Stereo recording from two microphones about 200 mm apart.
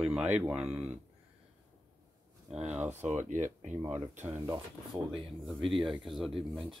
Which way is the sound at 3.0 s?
40° right (ahead or behind).